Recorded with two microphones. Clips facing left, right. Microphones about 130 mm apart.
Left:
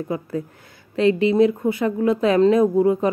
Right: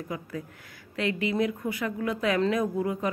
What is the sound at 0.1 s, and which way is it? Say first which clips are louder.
Speech: left 9 dB; 30° left (ahead or behind).